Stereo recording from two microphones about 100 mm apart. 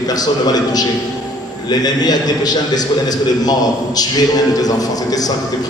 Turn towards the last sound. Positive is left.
turn(degrees=40)  # may be behind; listen again after turning